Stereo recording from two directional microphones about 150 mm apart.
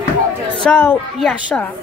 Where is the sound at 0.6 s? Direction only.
15° left (ahead or behind).